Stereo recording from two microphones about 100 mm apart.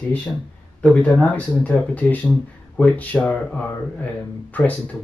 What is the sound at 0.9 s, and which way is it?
Speech, 10° left (ahead or behind).